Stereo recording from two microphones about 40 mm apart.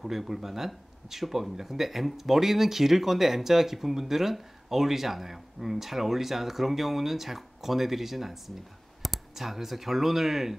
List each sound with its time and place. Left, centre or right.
0.0 s speech: centre